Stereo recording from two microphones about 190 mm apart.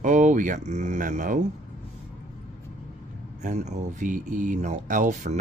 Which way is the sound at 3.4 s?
40° right (ahead or behind).